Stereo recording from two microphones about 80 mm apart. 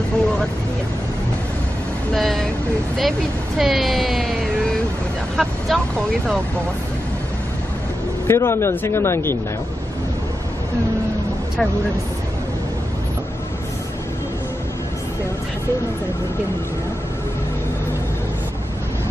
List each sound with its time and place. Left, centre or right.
2.1 s speech: centre
8.3 s speech: left